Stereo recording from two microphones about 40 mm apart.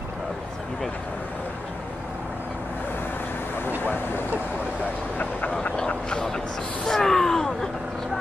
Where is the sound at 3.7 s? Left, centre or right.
Left.